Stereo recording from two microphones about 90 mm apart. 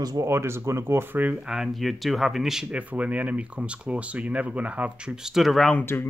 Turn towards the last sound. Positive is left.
turn(degrees=25)  # may be behind; listen again after turning